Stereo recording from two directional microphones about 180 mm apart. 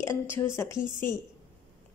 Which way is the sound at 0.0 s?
15° left (ahead or behind).